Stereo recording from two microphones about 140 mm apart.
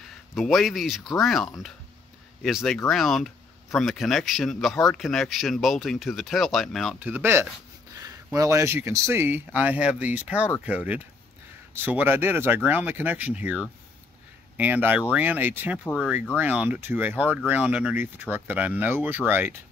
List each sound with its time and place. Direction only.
0.3 s speech: centre (ahead or behind)
7.0 s speech: 15° right (ahead or behind)